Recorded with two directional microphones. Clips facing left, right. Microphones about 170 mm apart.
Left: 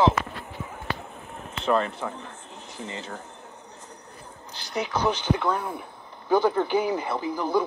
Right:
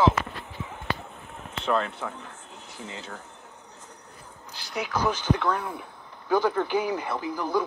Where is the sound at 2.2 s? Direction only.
Centre (ahead or behind).